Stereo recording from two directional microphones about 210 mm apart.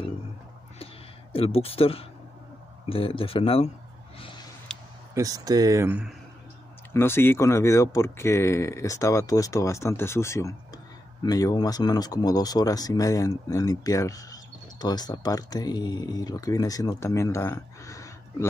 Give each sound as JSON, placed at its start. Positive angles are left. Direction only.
{"t": 1.3, "sound": "speech", "side_deg": 25}
{"t": 4.7, "sound": "a sound", "side_deg": 5}
{"t": 5.1, "sound": "speech", "side_deg": -15}
{"t": 6.9, "sound": "speech", "side_deg": 10}